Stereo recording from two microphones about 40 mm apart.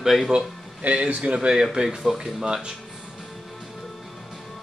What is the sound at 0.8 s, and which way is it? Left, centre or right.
Speech, right.